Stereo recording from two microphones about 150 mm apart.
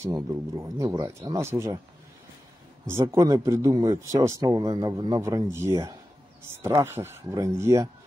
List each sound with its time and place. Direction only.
0.0 s speech: 20° right (ahead or behind)
2.9 s speech: 20° right (ahead or behind)